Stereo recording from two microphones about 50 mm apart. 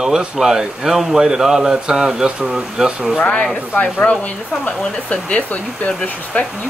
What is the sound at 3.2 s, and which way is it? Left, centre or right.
Speech, left.